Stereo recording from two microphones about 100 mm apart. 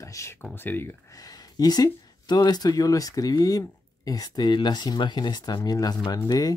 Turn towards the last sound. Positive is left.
turn(degrees=40)  # may be behind; listen again after turning